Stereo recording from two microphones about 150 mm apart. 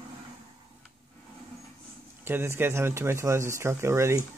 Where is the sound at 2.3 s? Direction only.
15° right (ahead or behind).